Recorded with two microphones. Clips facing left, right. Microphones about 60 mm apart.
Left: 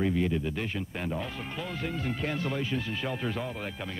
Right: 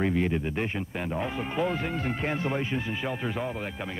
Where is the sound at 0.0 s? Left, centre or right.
Right.